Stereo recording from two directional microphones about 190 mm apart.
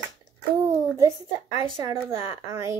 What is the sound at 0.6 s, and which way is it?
Speech, 15° right (ahead or behind).